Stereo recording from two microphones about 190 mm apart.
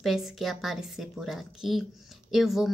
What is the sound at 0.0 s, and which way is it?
A woman's voice, centre (ahead or behind).